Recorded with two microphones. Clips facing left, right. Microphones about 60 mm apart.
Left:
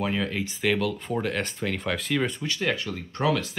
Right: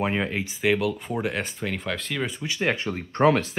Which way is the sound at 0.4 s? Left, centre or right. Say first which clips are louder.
Right 3 dB; centre.